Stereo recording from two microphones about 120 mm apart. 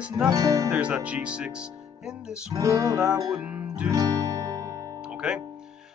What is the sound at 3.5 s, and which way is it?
Music, 10° right (ahead or behind).